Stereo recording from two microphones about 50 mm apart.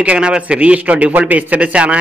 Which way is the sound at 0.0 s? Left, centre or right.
Centre.